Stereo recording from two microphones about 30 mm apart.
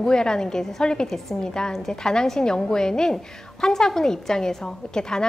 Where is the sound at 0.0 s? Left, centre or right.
Left.